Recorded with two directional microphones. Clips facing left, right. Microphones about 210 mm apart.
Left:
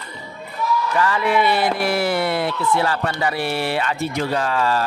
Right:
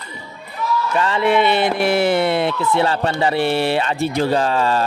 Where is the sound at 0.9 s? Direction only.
25° right (ahead or behind).